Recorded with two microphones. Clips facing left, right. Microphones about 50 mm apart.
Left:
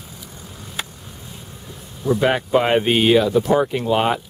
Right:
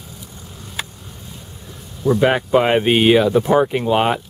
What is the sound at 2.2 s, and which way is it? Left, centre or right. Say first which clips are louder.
Speech: right 2 dB; centre.